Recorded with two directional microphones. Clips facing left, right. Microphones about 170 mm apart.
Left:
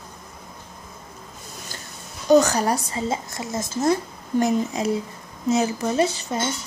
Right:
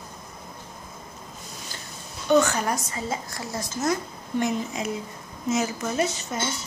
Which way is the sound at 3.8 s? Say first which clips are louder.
Left 5 dB; 35° left (ahead or behind).